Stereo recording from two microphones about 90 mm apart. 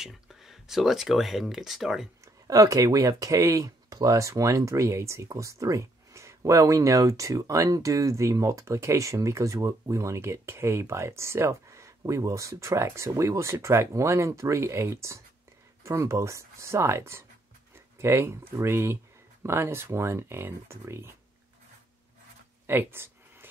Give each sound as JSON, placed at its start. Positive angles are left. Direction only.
{"t": 0.0, "sound": "speech", "side_deg": -5}
{"t": 2.2, "sound": "speech", "side_deg": -40}
{"t": 22.7, "sound": "a sound", "side_deg": -25}